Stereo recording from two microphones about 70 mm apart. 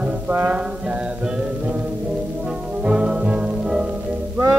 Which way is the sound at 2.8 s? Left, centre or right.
Centre.